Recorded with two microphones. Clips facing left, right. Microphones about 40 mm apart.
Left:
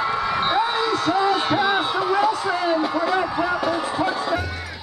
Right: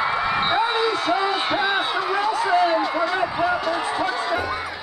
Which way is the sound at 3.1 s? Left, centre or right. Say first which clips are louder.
Even; centre.